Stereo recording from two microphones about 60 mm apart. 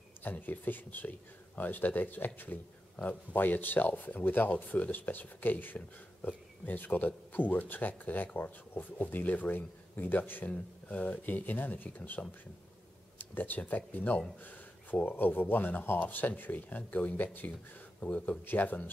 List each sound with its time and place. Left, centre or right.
0.2 s speech: left
13.2 s speech: left
18.4 s speech: left